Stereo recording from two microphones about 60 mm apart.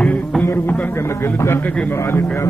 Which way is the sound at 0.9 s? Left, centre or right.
Left.